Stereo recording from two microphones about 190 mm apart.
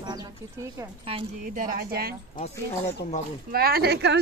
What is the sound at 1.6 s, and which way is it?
Speech, 50° right (ahead or behind).